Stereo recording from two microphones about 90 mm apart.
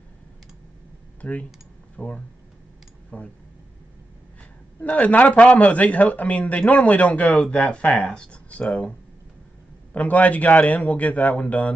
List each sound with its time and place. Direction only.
1.2 s a man's voice: 15° left (ahead or behind)
4.8 s a man's voice: 15° left (ahead or behind)
9.9 s a man's voice: 15° left (ahead or behind)